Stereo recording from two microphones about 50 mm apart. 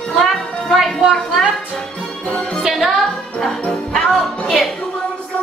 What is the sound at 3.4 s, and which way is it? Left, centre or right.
Jingle bell, centre.